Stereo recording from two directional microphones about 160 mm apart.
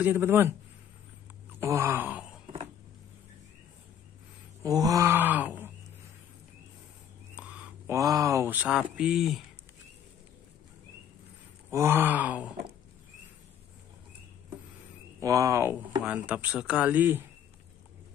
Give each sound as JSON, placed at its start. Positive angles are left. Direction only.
{"t": 0.0, "sound": "speech", "side_deg": -15}
{"t": 1.6, "sound": "wail", "side_deg": -15}
{"t": 4.6, "sound": "speech", "side_deg": -20}
{"t": 7.3, "sound": "a sound", "side_deg": -10}
{"t": 7.9, "sound": "speech", "side_deg": -20}
{"t": 11.7, "sound": "speech", "side_deg": -15}
{"t": 15.1, "sound": "speech", "side_deg": -20}